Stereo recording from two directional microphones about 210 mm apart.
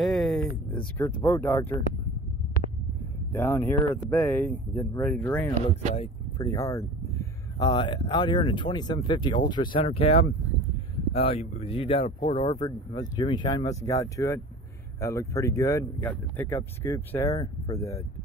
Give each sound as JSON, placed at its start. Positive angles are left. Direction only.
{"t": 0.0, "sound": "a sound", "side_deg": 0}
{"t": 0.9, "sound": "speech", "side_deg": 10}
{"t": 3.3, "sound": "speech", "side_deg": 15}